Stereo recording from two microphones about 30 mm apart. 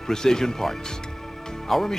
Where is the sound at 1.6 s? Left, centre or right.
Centre.